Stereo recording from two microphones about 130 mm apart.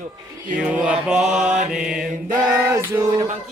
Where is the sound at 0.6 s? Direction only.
5° right (ahead or behind).